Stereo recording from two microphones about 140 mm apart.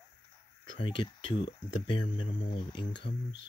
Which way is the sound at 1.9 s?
40° left (ahead or behind).